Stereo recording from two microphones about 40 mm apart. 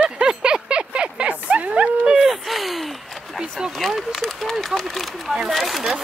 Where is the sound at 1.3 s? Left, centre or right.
Right.